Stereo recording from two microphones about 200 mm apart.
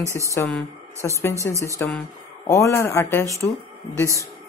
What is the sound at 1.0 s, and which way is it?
Speech, 15° left (ahead or behind).